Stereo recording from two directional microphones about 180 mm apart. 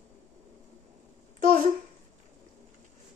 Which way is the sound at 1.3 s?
50° right (ahead or behind).